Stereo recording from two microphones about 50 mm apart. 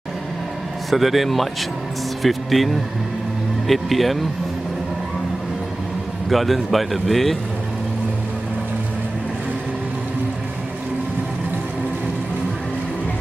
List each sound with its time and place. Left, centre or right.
0.8 s speech: centre
6.2 s speech: centre